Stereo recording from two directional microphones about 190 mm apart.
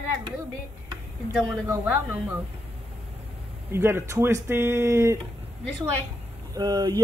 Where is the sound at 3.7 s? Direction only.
10° right (ahead or behind).